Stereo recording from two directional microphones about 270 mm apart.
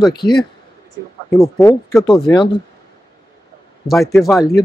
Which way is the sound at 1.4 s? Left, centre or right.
Centre.